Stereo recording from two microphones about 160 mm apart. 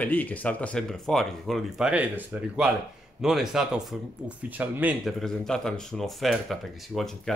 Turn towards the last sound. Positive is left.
turn(degrees=0)  # may be behind; listen again after turning